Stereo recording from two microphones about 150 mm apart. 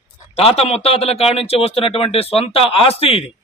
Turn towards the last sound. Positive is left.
turn(degrees=40)  # may be behind; listen again after turning